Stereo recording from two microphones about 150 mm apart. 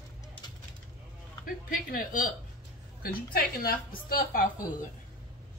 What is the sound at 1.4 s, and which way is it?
Speech, 70° left (ahead or behind).